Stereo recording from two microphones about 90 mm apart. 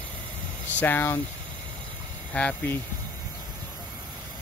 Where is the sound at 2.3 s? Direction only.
15° left (ahead or behind).